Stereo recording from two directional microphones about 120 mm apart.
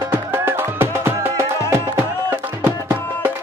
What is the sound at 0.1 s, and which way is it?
Music, 20° right (ahead or behind).